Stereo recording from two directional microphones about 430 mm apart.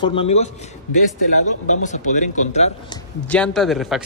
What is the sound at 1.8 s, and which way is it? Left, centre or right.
Speech, centre.